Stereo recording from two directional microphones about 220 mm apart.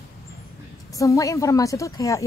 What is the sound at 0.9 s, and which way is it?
Music, 15° left (ahead or behind).